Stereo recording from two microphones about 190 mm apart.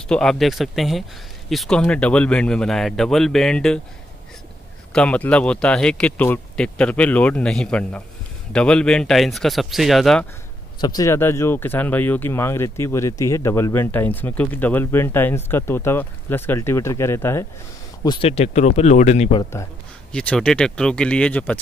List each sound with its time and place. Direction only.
0.1 s speech: 5° left (ahead or behind)
4.9 s speech: 5° left (ahead or behind)
10.8 s speech: 20° left (ahead or behind)
18.0 s speech: 25° left (ahead or behind)
19.5 s a sound: 15° left (ahead or behind)
20.2 s speech: 5° left (ahead or behind)